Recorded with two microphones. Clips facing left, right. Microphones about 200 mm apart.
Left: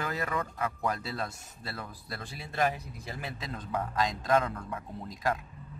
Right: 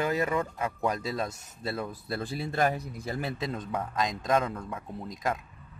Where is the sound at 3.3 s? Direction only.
25° right (ahead or behind).